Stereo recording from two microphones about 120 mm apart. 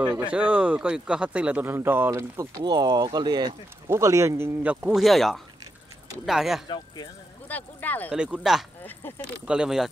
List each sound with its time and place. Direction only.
0.0 s speech: 10° right (ahead or behind); by 3.5 s 35° right (ahead or behind)
3.9 s speech: 25° right (ahead or behind)
4.6 s speech: 10° right (ahead or behind)
5.0 s speech: centre (ahead or behind)
7.4 s speech: 15° left (ahead or behind)
8.1 s speech: 5° right (ahead or behind)